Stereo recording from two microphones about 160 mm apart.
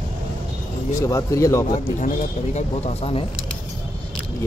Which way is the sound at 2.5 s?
40° left (ahead or behind).